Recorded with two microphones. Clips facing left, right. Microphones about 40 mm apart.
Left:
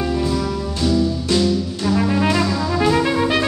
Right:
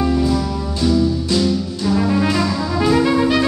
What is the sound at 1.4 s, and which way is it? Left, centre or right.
Brass instrument, centre.